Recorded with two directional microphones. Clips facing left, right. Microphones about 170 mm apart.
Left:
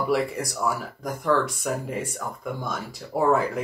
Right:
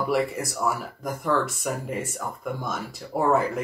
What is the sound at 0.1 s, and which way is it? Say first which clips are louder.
Speech: even; centre (ahead or behind).